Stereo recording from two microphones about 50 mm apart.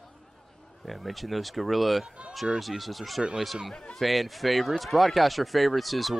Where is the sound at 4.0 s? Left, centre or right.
Centre.